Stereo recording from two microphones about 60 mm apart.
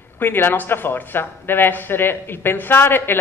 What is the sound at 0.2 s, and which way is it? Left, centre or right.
A woman's voice, left.